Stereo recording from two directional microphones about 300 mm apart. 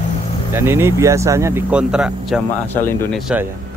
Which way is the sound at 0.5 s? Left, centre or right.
Centre.